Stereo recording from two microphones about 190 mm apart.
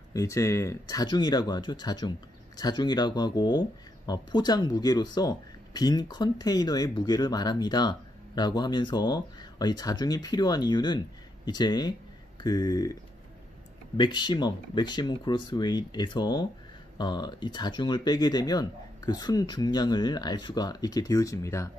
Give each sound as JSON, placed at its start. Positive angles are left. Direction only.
{"t": 0.1, "sound": "speech", "side_deg": 15}
{"t": 13.9, "sound": "speech", "side_deg": 25}